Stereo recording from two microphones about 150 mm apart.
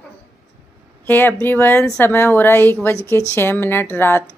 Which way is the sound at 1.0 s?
10° left (ahead or behind).